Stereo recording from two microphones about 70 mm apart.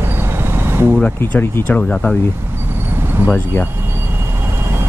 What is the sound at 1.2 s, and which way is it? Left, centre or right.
Speech, left.